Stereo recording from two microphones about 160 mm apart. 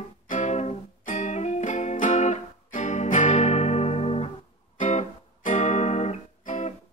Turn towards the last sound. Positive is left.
turn(degrees=45)  # may be behind; listen again after turning